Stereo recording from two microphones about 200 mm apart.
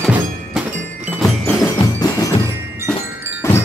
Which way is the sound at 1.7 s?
20° left (ahead or behind).